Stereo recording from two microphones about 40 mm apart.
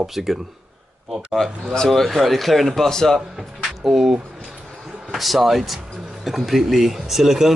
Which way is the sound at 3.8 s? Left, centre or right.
Centre.